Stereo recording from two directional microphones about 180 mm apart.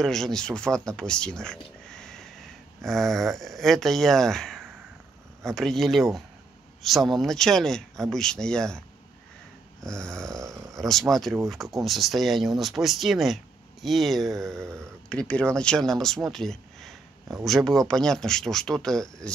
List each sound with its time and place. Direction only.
0.0 s speech: centre (ahead or behind)
9.8 s speech: 5° left (ahead or behind)
10.4 s speech: 15° right (ahead or behind)
10.8 s speech: centre (ahead or behind)